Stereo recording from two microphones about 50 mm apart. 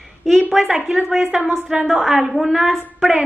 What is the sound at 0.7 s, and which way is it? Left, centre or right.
A woman's voice, centre.